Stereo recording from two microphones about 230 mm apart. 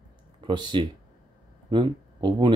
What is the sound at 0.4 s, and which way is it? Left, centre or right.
Speech, centre.